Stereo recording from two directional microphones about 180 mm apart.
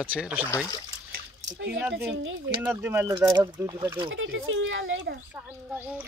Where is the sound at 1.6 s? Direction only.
90° right.